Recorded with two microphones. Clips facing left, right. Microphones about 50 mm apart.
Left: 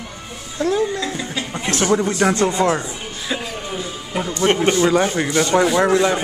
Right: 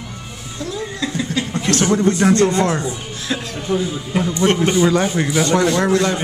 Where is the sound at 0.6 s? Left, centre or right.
Left.